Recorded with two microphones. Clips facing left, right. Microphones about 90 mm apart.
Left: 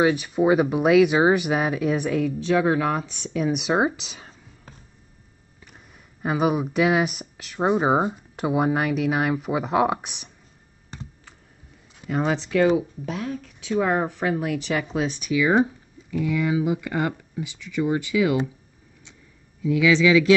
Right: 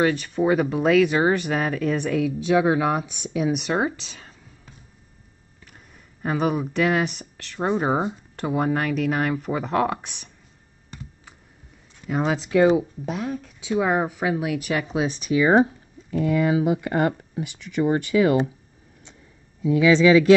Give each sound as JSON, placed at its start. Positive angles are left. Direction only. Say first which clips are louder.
{"t": 0.0, "sound": "speech", "louder": "left 1 dB", "side_deg": 10}
{"t": 2.4, "sound": "speech", "louder": "right 2 dB", "side_deg": -15}
{"t": 3.6, "sound": "speech", "louder": "left 2 dB", "side_deg": 15}
{"t": 6.2, "sound": "speech", "louder": "left 1 dB", "side_deg": 10}
{"t": 12.1, "sound": "speech", "louder": "right 1 dB", "side_deg": -5}
{"t": 15.2, "sound": "speech", "louder": "right 3 dB", "side_deg": -40}
{"t": 19.7, "sound": "speech", "louder": "right 2 dB", "side_deg": -40}